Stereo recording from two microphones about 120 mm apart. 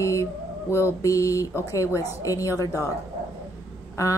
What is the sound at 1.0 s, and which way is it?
A woman's voice, 25° left (ahead or behind).